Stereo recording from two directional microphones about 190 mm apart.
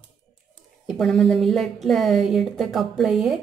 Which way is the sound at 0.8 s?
Centre (ahead or behind).